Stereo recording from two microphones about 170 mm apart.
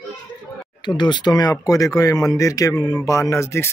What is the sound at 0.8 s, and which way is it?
Speech, 25° left (ahead or behind).